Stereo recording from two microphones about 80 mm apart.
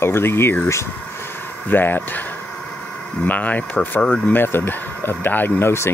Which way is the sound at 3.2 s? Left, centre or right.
Left.